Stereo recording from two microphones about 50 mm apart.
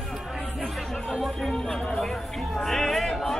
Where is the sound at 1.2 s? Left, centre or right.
Centre.